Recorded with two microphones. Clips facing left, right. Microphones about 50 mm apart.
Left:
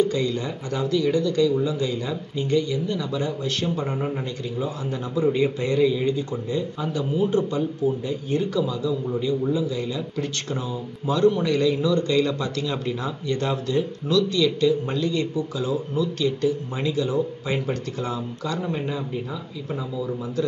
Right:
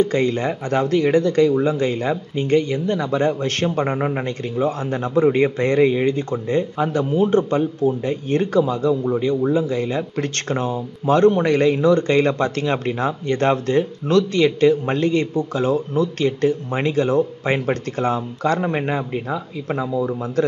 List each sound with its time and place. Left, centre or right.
0.0 s speech: right